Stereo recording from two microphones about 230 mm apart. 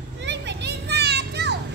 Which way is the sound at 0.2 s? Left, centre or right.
Right.